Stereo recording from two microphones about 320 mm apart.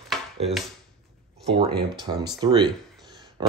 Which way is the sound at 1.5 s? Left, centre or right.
Centre.